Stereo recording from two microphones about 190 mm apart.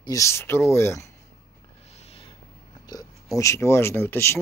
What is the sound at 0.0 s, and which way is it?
Speech, 15° left (ahead or behind).